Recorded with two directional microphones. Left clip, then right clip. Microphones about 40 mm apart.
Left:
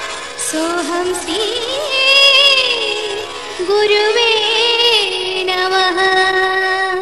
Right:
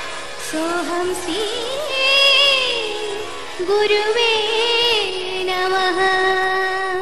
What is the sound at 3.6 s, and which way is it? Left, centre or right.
Child singing, left.